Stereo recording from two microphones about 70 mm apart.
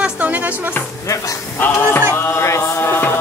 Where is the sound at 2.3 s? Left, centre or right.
Left.